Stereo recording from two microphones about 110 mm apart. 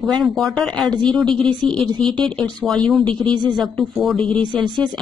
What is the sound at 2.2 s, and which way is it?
Speech, 10° left (ahead or behind).